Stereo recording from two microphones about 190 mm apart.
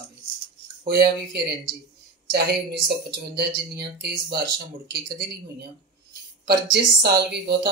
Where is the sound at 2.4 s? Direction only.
60° right (ahead or behind).